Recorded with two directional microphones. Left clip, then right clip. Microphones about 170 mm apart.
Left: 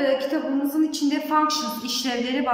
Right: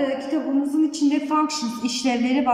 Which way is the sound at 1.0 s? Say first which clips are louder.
Even; 15° right (ahead or behind).